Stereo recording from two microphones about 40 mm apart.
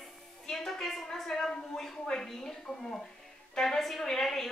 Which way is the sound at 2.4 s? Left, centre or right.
Centre.